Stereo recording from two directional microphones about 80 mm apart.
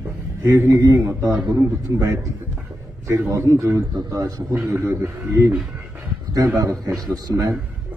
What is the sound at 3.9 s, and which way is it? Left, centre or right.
Speech, right.